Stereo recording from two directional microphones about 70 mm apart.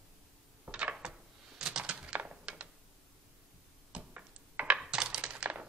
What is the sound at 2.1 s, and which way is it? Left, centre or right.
Typing, centre.